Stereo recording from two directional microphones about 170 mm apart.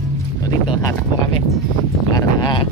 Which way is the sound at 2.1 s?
25° left (ahead or behind).